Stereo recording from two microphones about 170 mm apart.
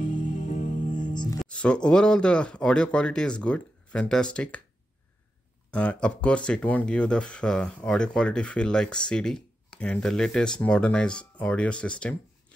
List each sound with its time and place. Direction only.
0.0 s music: 50° left (ahead or behind)
1.1 s music: 25° left (ahead or behind)
1.4 s speech: 5° left (ahead or behind)
5.7 s speech: 10° left (ahead or behind)